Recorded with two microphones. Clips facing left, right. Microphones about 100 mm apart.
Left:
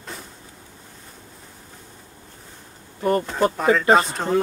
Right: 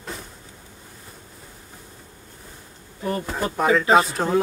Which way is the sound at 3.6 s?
5° right (ahead or behind).